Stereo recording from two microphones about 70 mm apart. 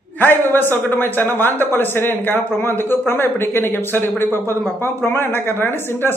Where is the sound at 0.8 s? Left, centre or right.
Left.